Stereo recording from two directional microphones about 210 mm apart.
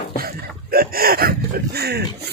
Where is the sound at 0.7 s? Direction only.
45° right (ahead or behind).